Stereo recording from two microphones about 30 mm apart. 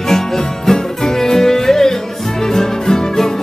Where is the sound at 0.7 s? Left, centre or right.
Centre.